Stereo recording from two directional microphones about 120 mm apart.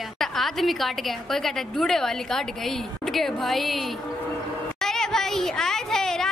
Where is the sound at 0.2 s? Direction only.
Centre (ahead or behind).